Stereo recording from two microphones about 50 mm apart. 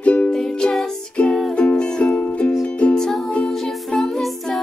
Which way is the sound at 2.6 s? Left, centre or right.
Centre.